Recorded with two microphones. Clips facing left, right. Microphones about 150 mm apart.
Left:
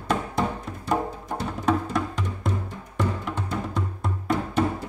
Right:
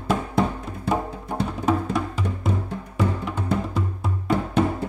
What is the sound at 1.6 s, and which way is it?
Music, 5° right (ahead or behind).